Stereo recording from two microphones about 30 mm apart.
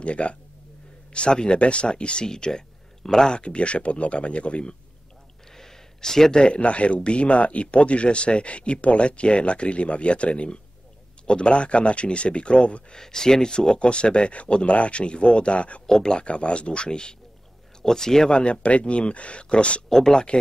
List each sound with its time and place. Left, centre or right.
0.0 s speech: left
2.2 s speech: left
3.3 s speech: left
5.5 s a sound: centre
6.3 s speech: left
12.9 s speech: centre
13.7 s speech: left
15.9 s speech: left
16.2 s speech: left
17.8 s speech: centre
18.3 s speech: left
19.9 s speech: centre